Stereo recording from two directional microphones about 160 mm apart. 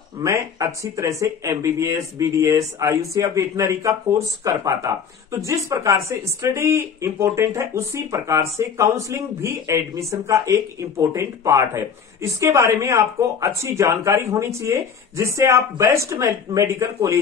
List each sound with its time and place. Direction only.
0.2 s speech: 20° right (ahead or behind)